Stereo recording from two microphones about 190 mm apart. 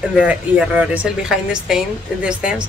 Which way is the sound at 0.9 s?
5° right (ahead or behind).